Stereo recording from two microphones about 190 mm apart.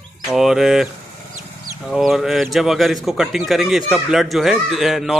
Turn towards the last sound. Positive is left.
turn(degrees=0)  # may be behind; listen again after turning